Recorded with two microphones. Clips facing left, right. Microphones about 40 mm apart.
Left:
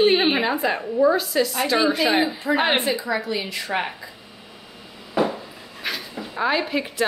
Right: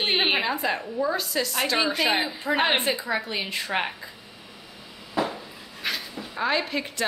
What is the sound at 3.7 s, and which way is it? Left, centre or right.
Speech, centre.